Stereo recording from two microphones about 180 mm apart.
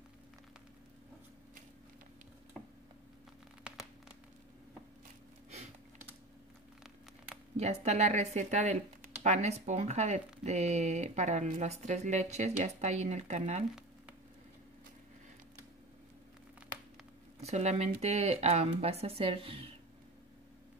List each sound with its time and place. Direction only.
7.5 s speech: 40° right (ahead or behind)
17.4 s speech: 40° right (ahead or behind)